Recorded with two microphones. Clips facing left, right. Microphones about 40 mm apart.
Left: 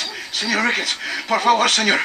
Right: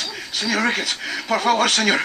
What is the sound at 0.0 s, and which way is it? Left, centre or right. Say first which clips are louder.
Speech: left 1 dB; centre.